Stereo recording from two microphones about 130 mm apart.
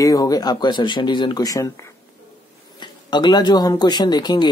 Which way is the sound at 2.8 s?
35° left (ahead or behind).